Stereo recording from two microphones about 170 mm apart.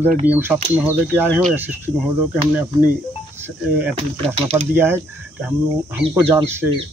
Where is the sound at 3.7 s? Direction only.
10° right (ahead or behind).